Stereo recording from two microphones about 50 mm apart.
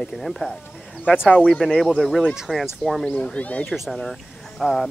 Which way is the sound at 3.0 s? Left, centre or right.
Left.